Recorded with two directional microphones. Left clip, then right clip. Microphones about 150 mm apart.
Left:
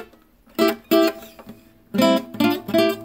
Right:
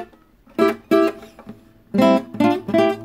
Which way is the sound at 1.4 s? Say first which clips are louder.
Right 2 dB; 30° right (ahead or behind).